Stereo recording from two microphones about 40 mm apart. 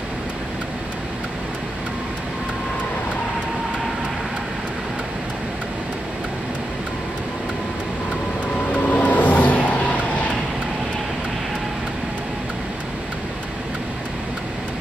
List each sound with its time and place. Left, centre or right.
8.8 s vehicle: left